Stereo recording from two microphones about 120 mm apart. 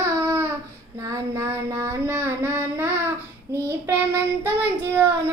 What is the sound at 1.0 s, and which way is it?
Child singing, 25° right (ahead or behind).